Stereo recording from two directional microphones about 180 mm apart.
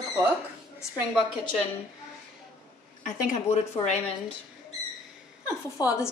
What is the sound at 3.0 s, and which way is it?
A woman's voice, 45° left (ahead or behind).